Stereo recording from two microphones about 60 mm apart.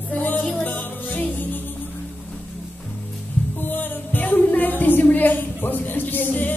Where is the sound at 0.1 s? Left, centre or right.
Left.